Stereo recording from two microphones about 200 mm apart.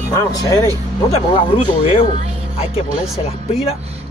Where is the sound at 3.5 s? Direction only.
30° left (ahead or behind).